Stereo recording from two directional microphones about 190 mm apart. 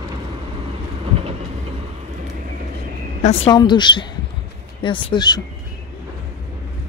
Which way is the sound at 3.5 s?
25° left (ahead or behind).